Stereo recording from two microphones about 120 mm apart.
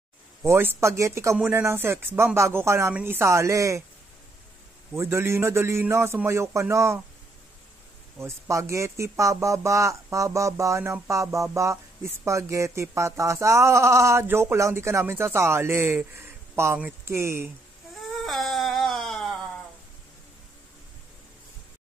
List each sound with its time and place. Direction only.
0.5 s speech: 20° right (ahead or behind)
4.9 s speech: 20° right (ahead or behind)
8.2 s speech: 25° right (ahead or behind)
18.2 s a sound: centre (ahead or behind)